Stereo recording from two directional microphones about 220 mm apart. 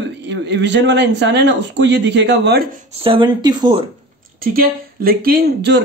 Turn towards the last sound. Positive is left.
turn(degrees=-50)  # may be behind; listen again after turning